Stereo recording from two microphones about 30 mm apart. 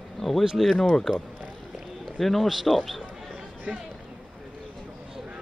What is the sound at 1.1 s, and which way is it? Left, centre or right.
A man's voice, centre.